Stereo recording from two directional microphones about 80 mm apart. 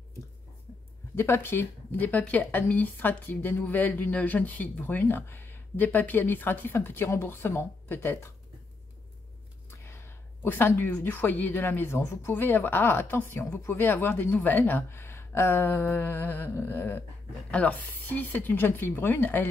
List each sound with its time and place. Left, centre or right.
1.1 s speech: left
9.7 s speech: left